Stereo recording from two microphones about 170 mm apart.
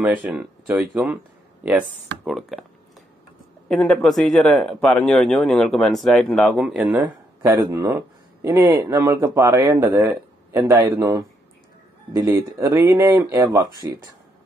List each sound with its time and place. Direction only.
0.0 s a man's voice: 10° right (ahead or behind)
3.6 s a man's voice: 5° left (ahead or behind)
7.7 s speech: 15° right (ahead or behind)